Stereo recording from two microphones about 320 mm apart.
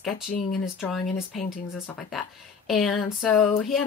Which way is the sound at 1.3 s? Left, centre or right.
Left.